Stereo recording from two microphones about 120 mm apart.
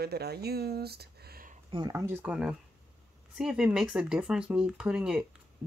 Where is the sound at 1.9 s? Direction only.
20° right (ahead or behind).